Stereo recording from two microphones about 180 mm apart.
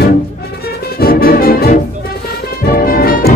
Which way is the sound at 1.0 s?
55° left (ahead or behind).